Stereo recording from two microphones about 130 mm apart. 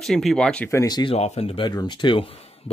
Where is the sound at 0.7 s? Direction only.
25° left (ahead or behind).